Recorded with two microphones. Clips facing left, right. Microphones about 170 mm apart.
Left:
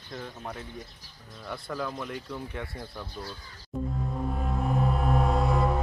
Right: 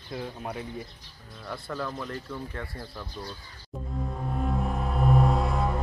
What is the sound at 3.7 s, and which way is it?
Speech, centre (ahead or behind).